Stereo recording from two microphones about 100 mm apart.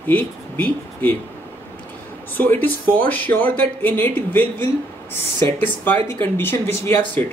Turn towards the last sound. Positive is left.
turn(degrees=20)  # may be behind; listen again after turning